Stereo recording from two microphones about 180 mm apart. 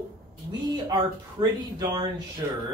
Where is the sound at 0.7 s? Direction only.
25° right (ahead or behind).